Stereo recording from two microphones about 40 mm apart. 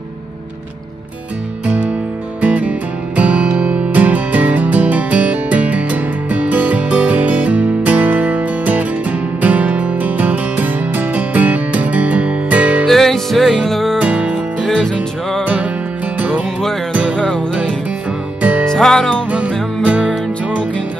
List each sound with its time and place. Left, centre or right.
1.7 s music: right
12.8 s music: centre
13.9 s music: right
15.4 s music: right
17.2 s music: left
18.7 s music: centre
19.8 s music: right